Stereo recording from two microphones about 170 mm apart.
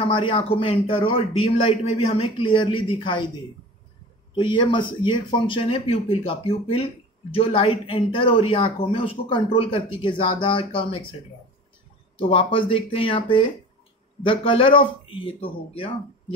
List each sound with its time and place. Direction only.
0.0 s speech: 30° left (ahead or behind)
4.4 s speech: 30° left (ahead or behind)
12.2 s speech: 35° left (ahead or behind)